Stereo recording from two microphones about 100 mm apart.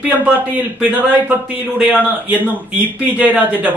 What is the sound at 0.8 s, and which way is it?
Speech, 15° right (ahead or behind).